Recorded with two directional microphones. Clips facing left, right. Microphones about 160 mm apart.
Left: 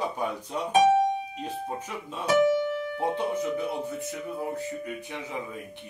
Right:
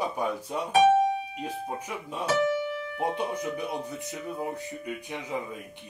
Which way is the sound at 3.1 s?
15° right (ahead or behind).